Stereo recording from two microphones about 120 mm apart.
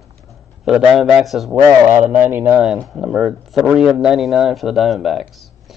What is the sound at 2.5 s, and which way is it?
Speech, 5° right (ahead or behind).